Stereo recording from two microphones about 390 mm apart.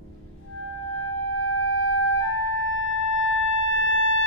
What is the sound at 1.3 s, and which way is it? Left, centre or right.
Music, left.